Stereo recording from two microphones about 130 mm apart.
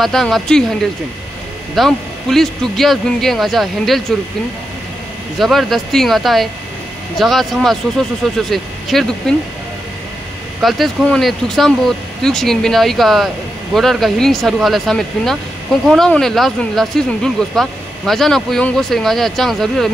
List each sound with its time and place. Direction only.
0.0 s speech: 5° left (ahead or behind)
1.8 s speech: centre (ahead or behind)
5.4 s speech: centre (ahead or behind)
10.6 s speech: centre (ahead or behind)